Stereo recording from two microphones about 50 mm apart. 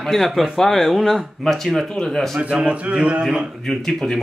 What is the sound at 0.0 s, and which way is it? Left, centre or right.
Speech, centre.